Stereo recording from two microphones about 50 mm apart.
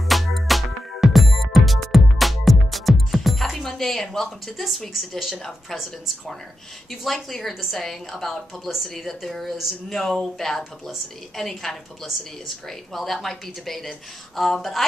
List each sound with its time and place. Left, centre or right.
0.1 s music: centre
4.6 s a woman's voice: centre
6.9 s a woman's voice: centre
11.3 s a woman's voice: centre